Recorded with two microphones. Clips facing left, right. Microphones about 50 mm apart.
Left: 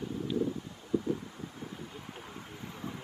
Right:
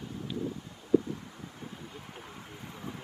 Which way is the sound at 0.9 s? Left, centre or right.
Right.